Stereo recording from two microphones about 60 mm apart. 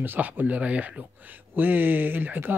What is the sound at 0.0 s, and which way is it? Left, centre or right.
Speech, right.